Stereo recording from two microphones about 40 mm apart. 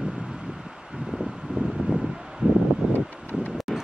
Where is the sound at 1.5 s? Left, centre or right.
Right.